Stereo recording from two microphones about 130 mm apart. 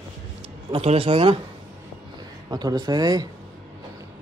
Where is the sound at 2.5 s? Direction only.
30° right (ahead or behind).